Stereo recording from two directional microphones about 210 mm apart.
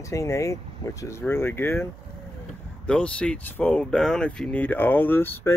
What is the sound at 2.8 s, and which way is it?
Speech, 5° left (ahead or behind).